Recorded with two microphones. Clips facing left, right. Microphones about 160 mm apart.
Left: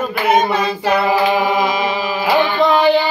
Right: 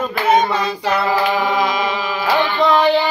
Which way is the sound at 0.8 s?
15° left (ahead or behind).